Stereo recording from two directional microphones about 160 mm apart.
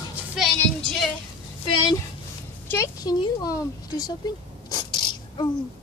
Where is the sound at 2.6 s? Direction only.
15° left (ahead or behind).